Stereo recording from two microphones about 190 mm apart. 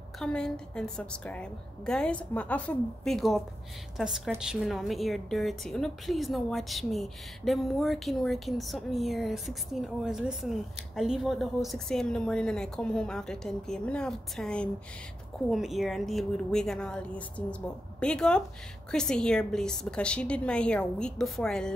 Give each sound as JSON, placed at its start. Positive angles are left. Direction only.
{"t": 0.2, "sound": "a woman's voice", "side_deg": 5}